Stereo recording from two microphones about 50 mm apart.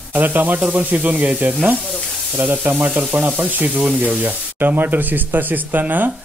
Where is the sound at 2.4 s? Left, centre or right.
Right.